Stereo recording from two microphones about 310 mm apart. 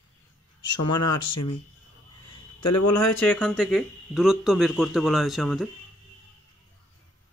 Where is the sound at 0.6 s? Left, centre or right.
Left.